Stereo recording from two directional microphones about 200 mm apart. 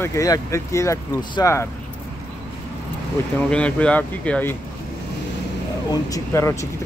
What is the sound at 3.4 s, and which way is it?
Speech, 5° left (ahead or behind).